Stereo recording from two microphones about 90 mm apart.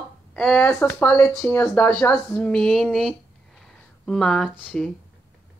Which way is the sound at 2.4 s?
15° left (ahead or behind).